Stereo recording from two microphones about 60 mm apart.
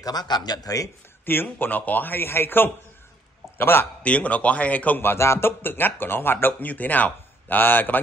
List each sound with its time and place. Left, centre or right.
0.0 s a man's voice: left
1.2 s a man's voice: left
4.0 s a man's voice: left
5.0 s speech: left
5.6 s speech: left